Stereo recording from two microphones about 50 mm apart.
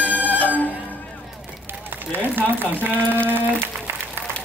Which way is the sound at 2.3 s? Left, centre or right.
Right.